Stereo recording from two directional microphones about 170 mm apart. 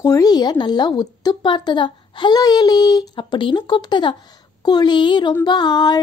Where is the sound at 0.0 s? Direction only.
20° left (ahead or behind).